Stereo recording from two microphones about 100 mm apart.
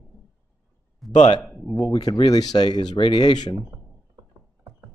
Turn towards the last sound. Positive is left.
turn(degrees=50)  # may be behind; listen again after turning